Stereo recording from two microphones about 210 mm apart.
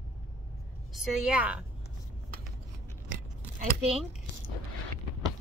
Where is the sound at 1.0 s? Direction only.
Centre (ahead or behind).